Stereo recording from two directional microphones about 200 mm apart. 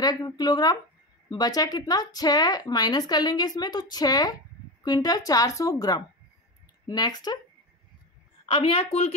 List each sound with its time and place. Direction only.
0.0 s a woman's voice: 20° left (ahead or behind)
8.5 s speech: 25° left (ahead or behind)